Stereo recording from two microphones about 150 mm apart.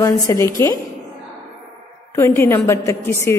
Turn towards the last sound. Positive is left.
turn(degrees=15)  # may be behind; listen again after turning